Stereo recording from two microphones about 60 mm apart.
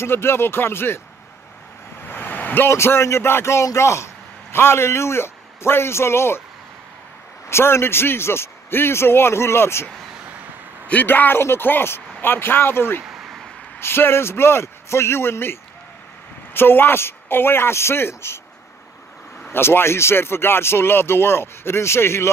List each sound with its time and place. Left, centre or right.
0.0 s a man's voice: left
2.0 s vehicle: left
2.7 s a man's voice: left
7.4 s speech: left
10.9 s a man's voice: left
13.0 s a sound: centre
13.7 s a man's voice: left
19.5 s speech: left